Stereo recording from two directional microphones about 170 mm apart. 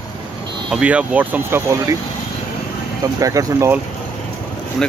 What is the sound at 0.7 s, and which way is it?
Speech, 5° right (ahead or behind).